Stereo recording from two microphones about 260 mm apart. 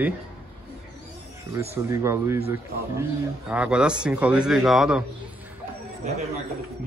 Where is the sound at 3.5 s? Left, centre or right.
Centre.